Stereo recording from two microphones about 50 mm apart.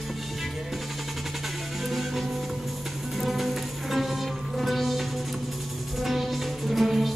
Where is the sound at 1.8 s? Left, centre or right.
Centre.